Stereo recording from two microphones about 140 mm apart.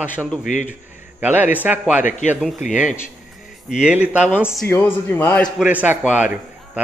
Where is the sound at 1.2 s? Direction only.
10° right (ahead or behind).